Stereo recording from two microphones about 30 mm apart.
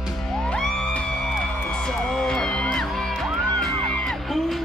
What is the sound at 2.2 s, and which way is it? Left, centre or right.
Music, left.